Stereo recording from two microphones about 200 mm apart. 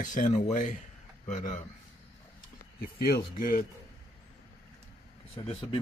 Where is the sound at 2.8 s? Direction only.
50° left (ahead or behind).